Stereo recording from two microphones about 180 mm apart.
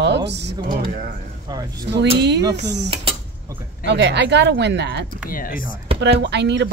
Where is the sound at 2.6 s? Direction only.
70° right (ahead or behind).